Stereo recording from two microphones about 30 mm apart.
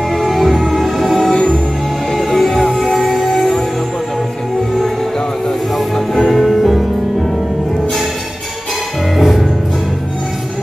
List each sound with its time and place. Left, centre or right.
0.3 s music: centre
1.3 s music: left
2.1 s music: centre
6.3 s music: centre
9.1 s music: centre